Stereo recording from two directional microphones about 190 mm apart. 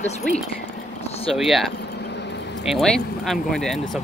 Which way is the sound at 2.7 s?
5° left (ahead or behind).